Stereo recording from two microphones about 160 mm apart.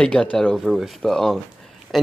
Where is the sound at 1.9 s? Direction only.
Centre (ahead or behind).